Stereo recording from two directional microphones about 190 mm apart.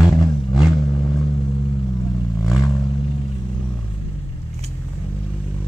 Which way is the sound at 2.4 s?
Centre (ahead or behind).